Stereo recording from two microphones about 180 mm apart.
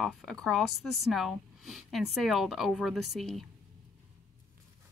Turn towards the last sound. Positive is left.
turn(degrees=0)  # may be behind; listen again after turning